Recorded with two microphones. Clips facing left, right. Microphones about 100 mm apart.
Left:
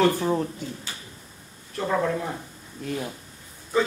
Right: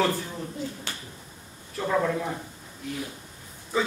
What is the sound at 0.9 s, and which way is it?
Finger snapping, 65° right (ahead or behind).